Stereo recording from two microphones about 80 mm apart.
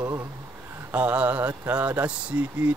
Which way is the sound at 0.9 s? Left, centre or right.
Centre.